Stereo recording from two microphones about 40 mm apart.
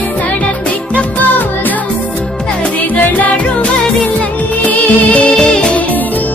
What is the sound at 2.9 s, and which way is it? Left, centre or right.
Music, left.